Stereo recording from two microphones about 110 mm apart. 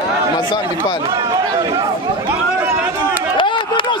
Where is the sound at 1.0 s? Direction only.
35° right (ahead or behind).